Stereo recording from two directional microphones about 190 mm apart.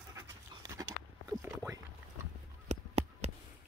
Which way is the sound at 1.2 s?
15° right (ahead or behind).